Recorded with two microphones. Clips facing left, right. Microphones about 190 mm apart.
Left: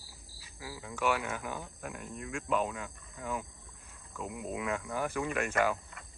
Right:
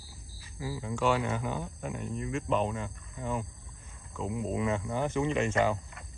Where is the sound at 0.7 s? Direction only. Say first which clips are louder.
Right 3 dB; 5° left (ahead or behind).